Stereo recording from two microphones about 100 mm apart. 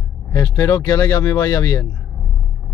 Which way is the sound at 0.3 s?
35° left (ahead or behind).